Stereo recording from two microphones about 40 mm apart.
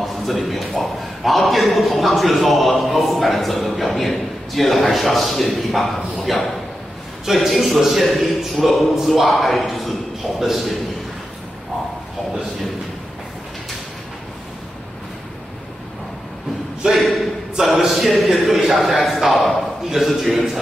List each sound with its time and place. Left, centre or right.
0.0 s a man's voice: centre
7.3 s a man's voice: centre
16.9 s a man's voice: centre